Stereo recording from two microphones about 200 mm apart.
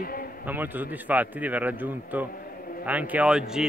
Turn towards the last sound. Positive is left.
turn(degrees=-5)  # may be behind; listen again after turning